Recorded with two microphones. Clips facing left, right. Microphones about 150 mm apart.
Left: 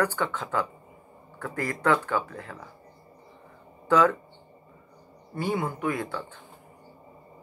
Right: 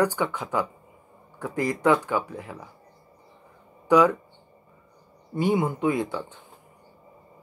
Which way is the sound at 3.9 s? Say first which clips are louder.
Right 3 dB; 15° right (ahead or behind).